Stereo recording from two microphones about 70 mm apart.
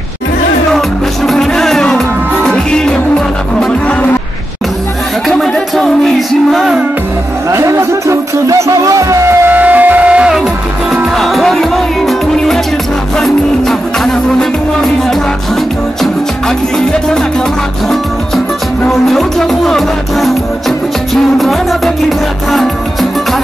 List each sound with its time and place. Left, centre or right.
0.7 s music: centre
5.4 s music: centre
7.5 s speech: right
9.5 s music: right
11.1 s music: centre
18.9 s music: centre